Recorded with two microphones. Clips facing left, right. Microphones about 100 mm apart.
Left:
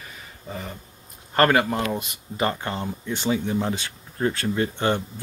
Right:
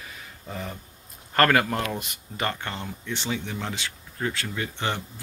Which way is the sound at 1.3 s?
15° left (ahead or behind).